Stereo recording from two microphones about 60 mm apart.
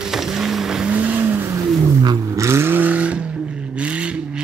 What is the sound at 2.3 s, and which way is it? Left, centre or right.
Vehicle, right.